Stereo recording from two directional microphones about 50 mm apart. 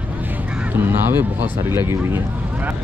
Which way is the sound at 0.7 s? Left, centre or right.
Right.